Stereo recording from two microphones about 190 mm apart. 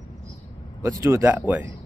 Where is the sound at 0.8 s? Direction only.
15° right (ahead or behind).